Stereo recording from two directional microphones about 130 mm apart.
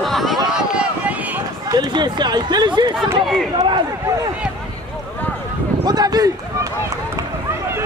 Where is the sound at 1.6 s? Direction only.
30° right (ahead or behind).